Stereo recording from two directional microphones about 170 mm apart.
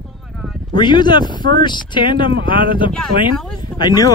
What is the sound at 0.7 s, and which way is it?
Speech, 25° left (ahead or behind).